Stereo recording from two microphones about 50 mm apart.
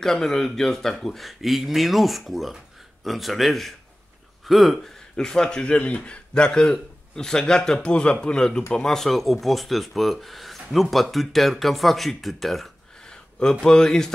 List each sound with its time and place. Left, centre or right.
0.0 s speech: centre
5.1 s speech: centre
13.0 s speech: centre